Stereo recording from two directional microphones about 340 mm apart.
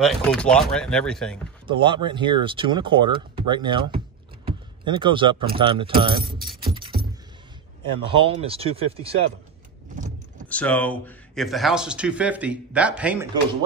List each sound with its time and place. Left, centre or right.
0.0 s speech: centre
1.7 s speech: centre
6.3 s speech: centre
6.6 s keys jangling: centre
8.0 s speech: centre
10.5 s speech: centre